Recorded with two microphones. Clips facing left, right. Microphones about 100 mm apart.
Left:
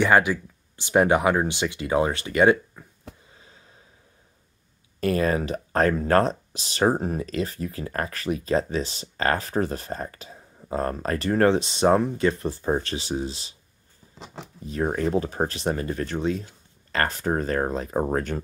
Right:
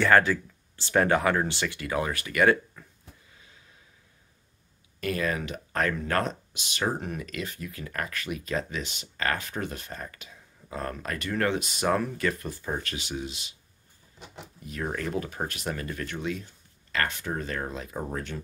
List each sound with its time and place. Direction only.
0.0 s speech: 15° left (ahead or behind)
3.3 s a sound: 30° left (ahead or behind)
5.0 s speech: 35° left (ahead or behind)
14.1 s speech: 90° left
14.6 s speech: 30° left (ahead or behind)